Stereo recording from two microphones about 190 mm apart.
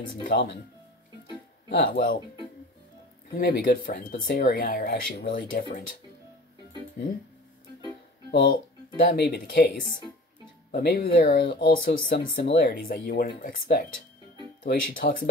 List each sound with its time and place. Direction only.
0.1 s speech: 50° left (ahead or behind)
1.7 s speech: 55° left (ahead or behind)
3.3 s speech: 60° left (ahead or behind)
8.3 s speech: 60° left (ahead or behind)
10.7 s speech: 55° left (ahead or behind)